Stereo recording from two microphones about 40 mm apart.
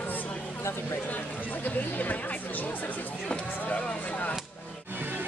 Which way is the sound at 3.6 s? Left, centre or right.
Left.